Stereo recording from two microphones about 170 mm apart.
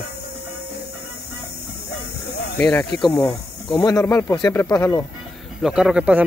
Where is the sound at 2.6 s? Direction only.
10° left (ahead or behind).